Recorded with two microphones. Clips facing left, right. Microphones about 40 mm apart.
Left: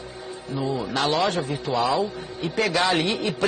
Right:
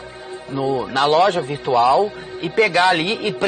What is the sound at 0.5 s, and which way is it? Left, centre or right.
Speech, centre.